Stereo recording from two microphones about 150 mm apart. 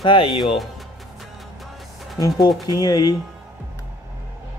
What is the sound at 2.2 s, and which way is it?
Speech, 25° left (ahead or behind).